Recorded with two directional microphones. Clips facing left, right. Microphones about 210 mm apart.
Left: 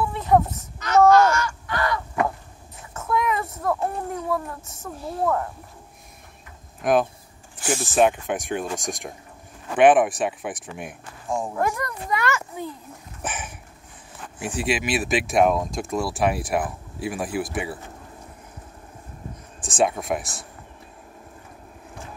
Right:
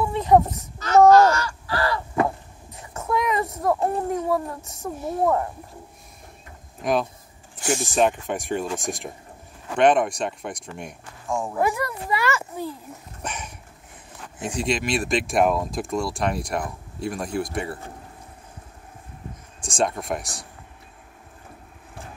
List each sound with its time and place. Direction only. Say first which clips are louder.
0.7 s a sound: right 2 dB; 35° right (ahead or behind)
2.9 s a sound: even; 10° right (ahead or behind)
4.2 s speech: right 3 dB; 10° right (ahead or behind)
6.8 s speech: left 3 dB; centre (ahead or behind)
11.2 s speech: even; 15° left (ahead or behind)
11.5 s speech: right 2 dB; 5° right (ahead or behind)
19.6 s speech: left 2 dB; 5° left (ahead or behind)